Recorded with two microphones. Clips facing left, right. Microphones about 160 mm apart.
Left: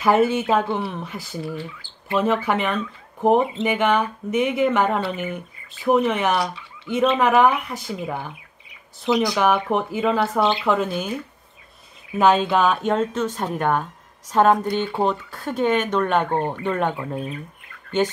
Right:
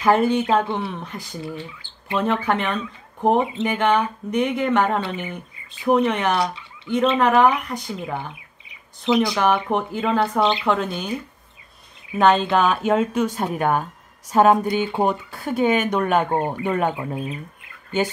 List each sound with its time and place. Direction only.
0.0 s speech: 5° left (ahead or behind)
1.4 s speech: 20° right (ahead or behind)
2.1 s speech: 5° left (ahead or behind)
9.3 s speech: centre (ahead or behind)
12.2 s speech: 5° left (ahead or behind)